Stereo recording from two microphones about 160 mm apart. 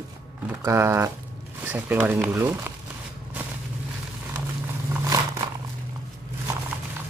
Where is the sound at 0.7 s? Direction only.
15° right (ahead or behind).